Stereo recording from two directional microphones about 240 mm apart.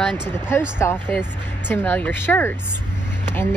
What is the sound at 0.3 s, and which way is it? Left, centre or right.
Speech, centre.